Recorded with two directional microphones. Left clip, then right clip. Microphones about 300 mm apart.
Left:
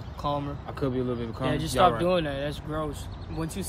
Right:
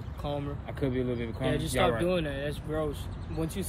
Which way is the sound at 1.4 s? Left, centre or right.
Left.